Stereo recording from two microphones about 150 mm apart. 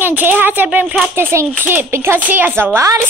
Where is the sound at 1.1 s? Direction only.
15° right (ahead or behind).